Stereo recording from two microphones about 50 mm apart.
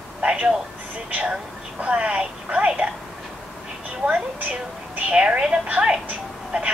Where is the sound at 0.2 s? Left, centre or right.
Right.